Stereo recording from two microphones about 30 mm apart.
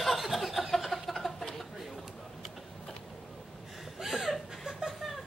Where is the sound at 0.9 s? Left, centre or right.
Centre.